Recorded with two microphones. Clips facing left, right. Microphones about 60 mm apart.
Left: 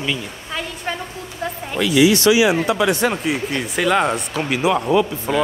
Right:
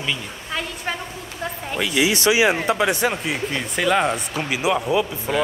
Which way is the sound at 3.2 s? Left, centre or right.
Centre.